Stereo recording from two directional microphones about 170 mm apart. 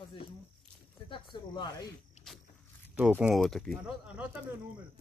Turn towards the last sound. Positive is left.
turn(degrees=-5)  # may be behind; listen again after turning